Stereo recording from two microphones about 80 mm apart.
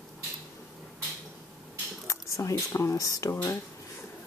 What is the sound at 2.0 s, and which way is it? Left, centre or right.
Speech, left.